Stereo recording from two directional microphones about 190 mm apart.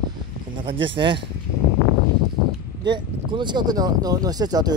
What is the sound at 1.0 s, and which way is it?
Speech, 25° right (ahead or behind).